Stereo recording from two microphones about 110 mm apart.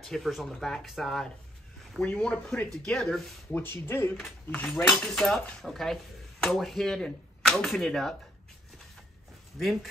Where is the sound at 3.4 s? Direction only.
20° left (ahead or behind).